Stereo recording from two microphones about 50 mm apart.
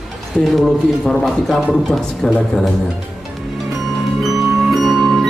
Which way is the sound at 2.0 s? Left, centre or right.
Centre.